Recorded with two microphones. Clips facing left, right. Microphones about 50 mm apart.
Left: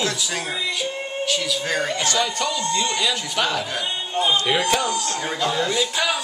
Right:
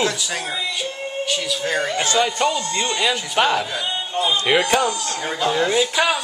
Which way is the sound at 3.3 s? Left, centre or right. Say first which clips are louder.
Right 6 dB; right.